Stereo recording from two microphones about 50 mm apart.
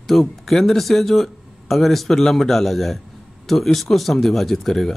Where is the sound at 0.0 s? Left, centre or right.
Centre.